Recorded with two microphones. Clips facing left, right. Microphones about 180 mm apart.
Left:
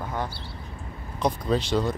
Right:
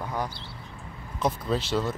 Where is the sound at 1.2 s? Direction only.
5° right (ahead or behind).